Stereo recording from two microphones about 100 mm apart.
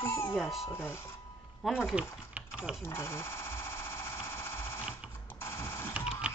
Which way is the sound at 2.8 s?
30° left (ahead or behind).